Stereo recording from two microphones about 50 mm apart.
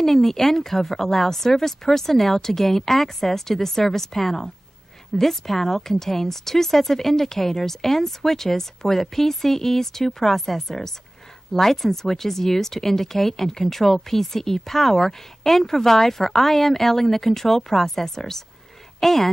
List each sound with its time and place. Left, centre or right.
0.0 s speech: centre